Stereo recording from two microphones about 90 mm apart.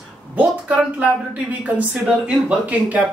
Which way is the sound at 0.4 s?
15° right (ahead or behind).